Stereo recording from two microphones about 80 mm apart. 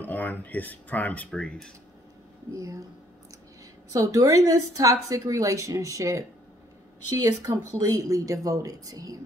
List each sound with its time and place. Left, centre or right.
0.0 s speech: left
1.3 s speech: centre
2.5 s a woman's voice: right
3.9 s a woman's voice: right
7.2 s a woman's voice: right